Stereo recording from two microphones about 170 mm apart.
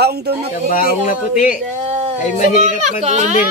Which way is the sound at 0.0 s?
70° right (ahead or behind).